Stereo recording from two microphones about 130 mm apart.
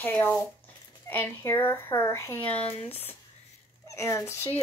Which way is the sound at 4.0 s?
25° left (ahead or behind).